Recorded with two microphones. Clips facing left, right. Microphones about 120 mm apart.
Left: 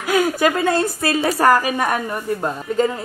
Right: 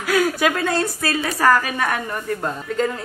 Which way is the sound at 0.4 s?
5° left (ahead or behind).